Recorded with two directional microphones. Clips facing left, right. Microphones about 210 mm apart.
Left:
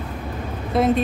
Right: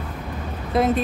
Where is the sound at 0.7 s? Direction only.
Centre (ahead or behind).